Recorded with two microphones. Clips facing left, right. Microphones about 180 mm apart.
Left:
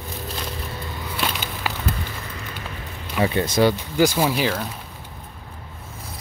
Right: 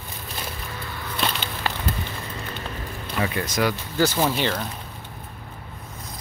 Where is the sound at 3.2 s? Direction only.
30° left (ahead or behind).